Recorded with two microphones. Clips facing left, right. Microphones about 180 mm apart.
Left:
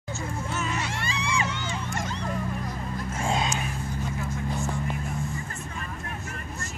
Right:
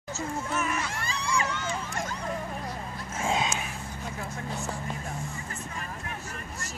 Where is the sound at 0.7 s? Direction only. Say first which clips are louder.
Left 2 dB; 65° left (ahead or behind).